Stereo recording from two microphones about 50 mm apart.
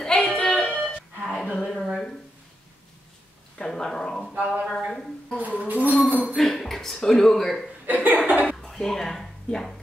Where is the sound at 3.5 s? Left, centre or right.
Centre.